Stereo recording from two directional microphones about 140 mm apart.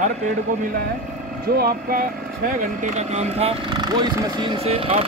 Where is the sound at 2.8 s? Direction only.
55° right (ahead or behind).